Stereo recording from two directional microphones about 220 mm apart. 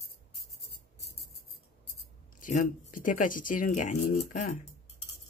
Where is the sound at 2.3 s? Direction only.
35° left (ahead or behind).